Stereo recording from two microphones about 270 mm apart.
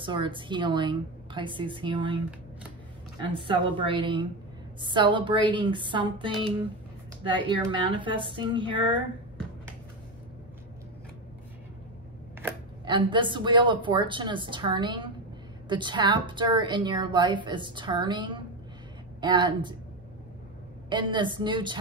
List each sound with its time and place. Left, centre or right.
0.0 s a woman's voice: centre
3.3 s a woman's voice: centre
12.4 s a woman's voice: centre
20.9 s a woman's voice: centre